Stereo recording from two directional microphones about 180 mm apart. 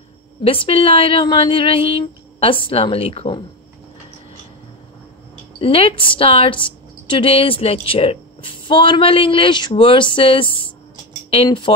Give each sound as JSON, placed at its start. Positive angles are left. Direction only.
{"t": 0.4, "sound": "a woman's voice", "side_deg": 30}
{"t": 5.6, "sound": "a woman's voice", "side_deg": 30}